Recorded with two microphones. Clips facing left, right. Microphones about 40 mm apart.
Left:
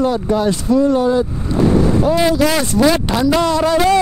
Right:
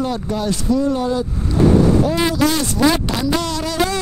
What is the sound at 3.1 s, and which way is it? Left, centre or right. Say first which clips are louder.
Speech: left 6 dB; left.